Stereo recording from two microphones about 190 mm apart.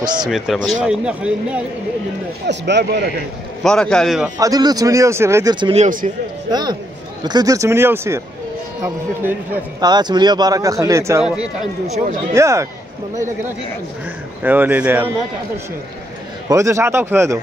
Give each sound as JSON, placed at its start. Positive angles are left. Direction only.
{"t": 0.2, "sound": "a man's voice", "side_deg": 0}
{"t": 2.4, "sound": "speech", "side_deg": -65}
{"t": 3.6, "sound": "a man's voice", "side_deg": 5}
{"t": 4.4, "sound": "a man's voice", "side_deg": -20}
{"t": 12.4, "sound": "a man's voice", "side_deg": -15}
{"t": 14.4, "sound": "a man's voice", "side_deg": -10}
{"t": 16.4, "sound": "a man's voice", "side_deg": -15}